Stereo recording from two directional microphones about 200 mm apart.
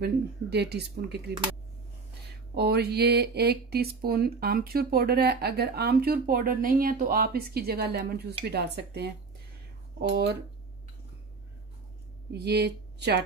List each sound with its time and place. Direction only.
0.0 s speech: 55° right (ahead or behind)
2.5 s speech: 55° right (ahead or behind)
12.3 s speech: 55° right (ahead or behind)